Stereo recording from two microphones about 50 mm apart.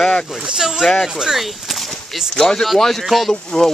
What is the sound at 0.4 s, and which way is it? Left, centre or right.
Speech, centre.